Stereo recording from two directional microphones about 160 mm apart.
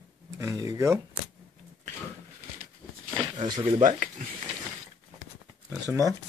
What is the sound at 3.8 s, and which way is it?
Speech, 50° right (ahead or behind).